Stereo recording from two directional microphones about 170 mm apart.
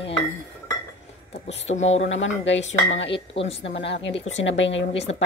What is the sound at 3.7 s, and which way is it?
A woman's voice, 90° left.